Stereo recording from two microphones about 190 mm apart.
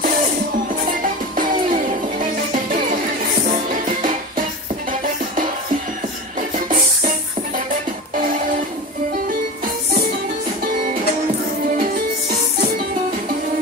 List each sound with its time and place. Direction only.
1.3 s music: 45° right (ahead or behind)